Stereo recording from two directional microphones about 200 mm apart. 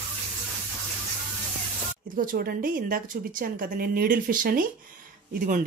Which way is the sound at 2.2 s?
45° right (ahead or behind).